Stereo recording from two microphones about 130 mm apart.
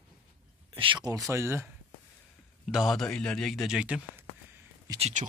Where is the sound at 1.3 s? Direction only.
20° right (ahead or behind).